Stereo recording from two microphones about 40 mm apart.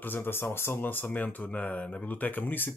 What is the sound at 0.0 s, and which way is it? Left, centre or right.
Speech, left.